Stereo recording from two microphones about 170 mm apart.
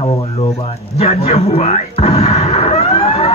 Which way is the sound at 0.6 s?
35° left (ahead or behind).